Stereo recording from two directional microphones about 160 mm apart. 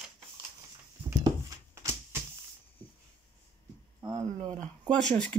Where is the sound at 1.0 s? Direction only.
20° right (ahead or behind).